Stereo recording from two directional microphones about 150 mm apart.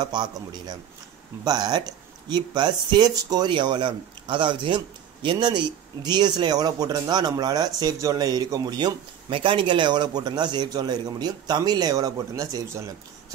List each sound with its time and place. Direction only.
0.0 s speech: 30° right (ahead or behind)